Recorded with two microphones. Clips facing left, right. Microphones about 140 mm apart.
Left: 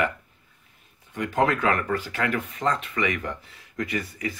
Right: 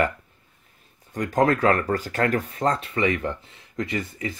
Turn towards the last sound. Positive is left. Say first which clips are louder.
# right 1 dB
turn(degrees=-25)  # may be behind; listen again after turning